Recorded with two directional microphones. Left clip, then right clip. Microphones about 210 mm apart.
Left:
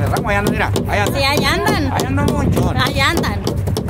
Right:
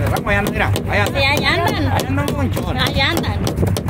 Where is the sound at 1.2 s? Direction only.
10° left (ahead or behind).